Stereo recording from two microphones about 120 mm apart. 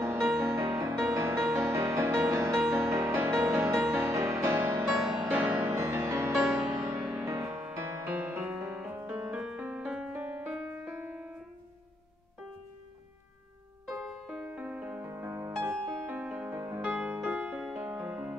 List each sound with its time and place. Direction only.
0.4 s music: 20° right (ahead or behind)
5.8 s music: 25° right (ahead or behind)
13.8 s music: centre (ahead or behind); by 15.5 s 20° right (ahead or behind)
15.6 s music: 10° right (ahead or behind)